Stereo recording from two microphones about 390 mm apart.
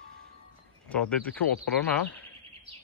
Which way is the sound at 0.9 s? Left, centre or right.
Centre.